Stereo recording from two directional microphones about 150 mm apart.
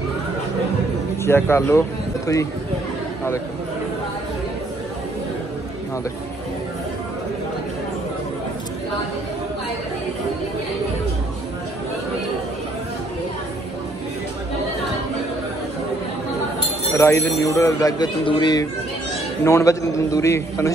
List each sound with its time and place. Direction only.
1.2 s a man's voice: 15° left (ahead or behind)
16.9 s speech: 20° left (ahead or behind)